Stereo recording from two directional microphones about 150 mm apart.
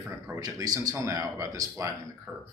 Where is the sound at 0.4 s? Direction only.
25° right (ahead or behind).